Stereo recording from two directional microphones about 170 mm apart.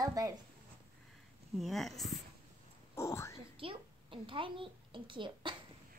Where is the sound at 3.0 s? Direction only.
15° left (ahead or behind).